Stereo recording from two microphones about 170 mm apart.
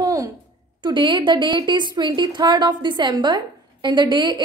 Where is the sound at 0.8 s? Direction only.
25° right (ahead or behind).